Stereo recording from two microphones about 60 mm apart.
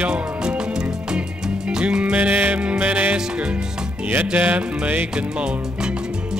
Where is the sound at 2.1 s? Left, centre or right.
Right.